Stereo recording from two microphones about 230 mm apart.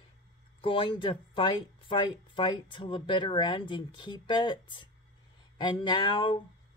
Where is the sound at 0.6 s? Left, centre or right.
Left.